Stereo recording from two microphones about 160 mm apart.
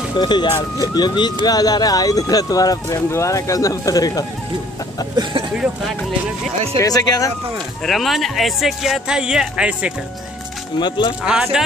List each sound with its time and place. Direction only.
0.1 s speech: 30° left (ahead or behind)
6.8 s speech: 25° left (ahead or behind)
7.8 s speech: centre (ahead or behind)
10.8 s speech: 30° left (ahead or behind)
11.2 s speech: 5° right (ahead or behind)